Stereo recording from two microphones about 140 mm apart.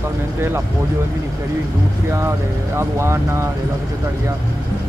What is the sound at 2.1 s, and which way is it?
Speech, 20° right (ahead or behind).